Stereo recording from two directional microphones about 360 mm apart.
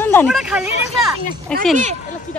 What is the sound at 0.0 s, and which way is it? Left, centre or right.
Speech, centre.